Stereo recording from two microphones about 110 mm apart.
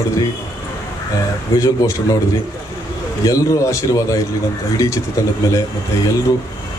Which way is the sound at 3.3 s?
30° left (ahead or behind).